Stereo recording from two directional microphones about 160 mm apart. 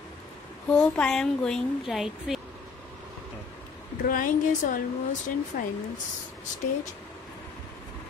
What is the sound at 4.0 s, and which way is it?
A woman's voice, 60° left (ahead or behind).